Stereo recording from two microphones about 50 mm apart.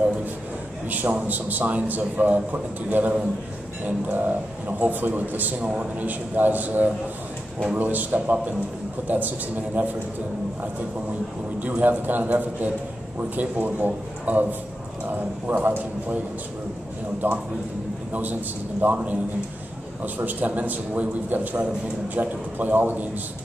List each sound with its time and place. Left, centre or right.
0.8 s a man's voice: right
11.6 s a man's voice: right
15.4 s a man's voice: right
17.2 s a man's voice: right